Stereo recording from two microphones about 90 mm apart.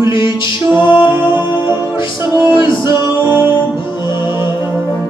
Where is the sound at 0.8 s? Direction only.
65° left (ahead or behind).